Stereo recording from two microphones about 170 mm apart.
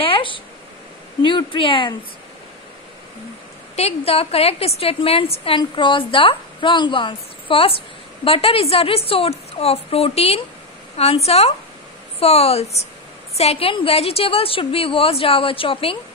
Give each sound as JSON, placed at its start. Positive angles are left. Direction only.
{"t": 0.0, "sound": "a sound", "side_deg": 30}
{"t": 1.2, "sound": "speech", "side_deg": 30}
{"t": 3.7, "sound": "a woman's voice", "side_deg": 35}